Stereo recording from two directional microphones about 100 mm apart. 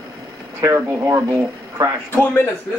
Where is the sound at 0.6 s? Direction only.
30° right (ahead or behind).